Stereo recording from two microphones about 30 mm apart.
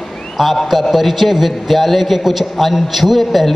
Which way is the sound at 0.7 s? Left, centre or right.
Centre.